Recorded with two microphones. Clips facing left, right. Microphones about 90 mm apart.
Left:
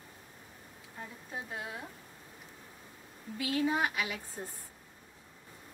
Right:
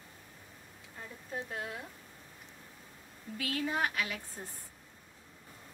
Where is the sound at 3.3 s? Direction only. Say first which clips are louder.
Left 3 dB; 10° left (ahead or behind).